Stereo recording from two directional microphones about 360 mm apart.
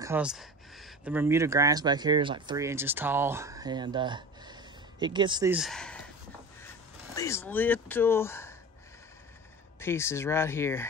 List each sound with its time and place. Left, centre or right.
0.0 s speech: centre
7.2 s speech: centre
9.8 s speech: centre